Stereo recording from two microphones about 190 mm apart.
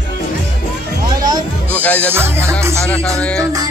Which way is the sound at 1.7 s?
10° left (ahead or behind).